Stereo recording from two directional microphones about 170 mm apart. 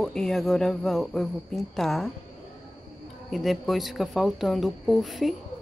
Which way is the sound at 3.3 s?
Centre (ahead or behind).